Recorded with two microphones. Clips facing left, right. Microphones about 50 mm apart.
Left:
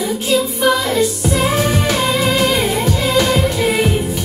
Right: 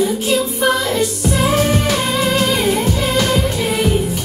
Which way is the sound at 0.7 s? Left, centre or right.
Left.